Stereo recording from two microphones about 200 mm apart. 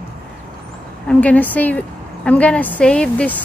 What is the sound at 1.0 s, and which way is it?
A woman's voice, 5° left (ahead or behind).